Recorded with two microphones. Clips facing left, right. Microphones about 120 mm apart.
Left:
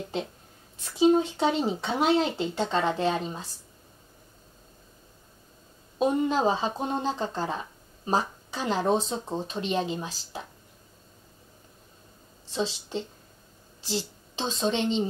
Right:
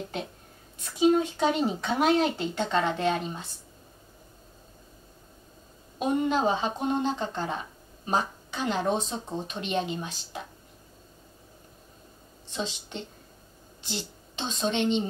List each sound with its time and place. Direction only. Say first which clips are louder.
0.9 s speech: left 1 dB; 30° left (ahead or behind)
5.9 s speech: left 1 dB; 30° left (ahead or behind)
12.5 s speech: left 4 dB; 30° left (ahead or behind)